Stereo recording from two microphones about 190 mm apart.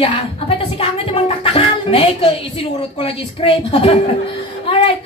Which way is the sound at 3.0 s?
30° left (ahead or behind).